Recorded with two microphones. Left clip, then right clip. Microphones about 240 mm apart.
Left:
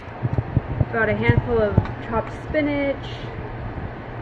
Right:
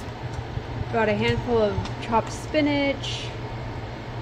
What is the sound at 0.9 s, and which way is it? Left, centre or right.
Speech, centre.